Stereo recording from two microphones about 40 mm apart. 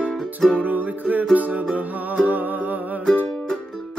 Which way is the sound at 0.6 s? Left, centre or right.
Right.